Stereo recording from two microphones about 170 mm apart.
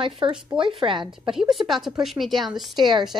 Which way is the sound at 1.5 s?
Centre (ahead or behind).